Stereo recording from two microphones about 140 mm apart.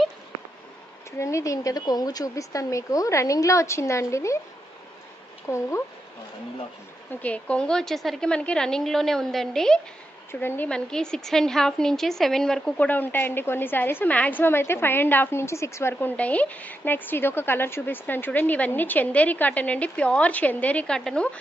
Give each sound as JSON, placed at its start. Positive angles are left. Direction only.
{"t": 1.2, "sound": "speech", "side_deg": 20}
{"t": 5.5, "sound": "speech", "side_deg": 20}
{"t": 7.2, "sound": "a woman's voice", "side_deg": 10}
{"t": 10.4, "sound": "a woman's voice", "side_deg": 15}